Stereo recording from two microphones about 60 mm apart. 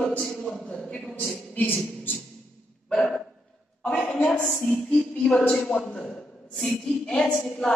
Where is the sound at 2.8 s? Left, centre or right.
Centre.